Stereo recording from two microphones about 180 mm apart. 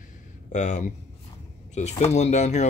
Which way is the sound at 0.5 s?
40° left (ahead or behind).